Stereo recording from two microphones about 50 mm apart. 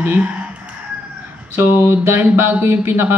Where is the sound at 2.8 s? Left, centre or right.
Right.